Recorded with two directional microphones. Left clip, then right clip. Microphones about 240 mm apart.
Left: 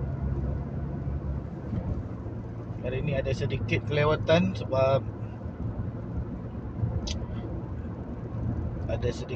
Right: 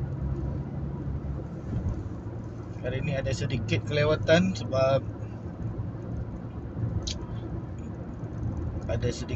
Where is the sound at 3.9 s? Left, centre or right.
Centre.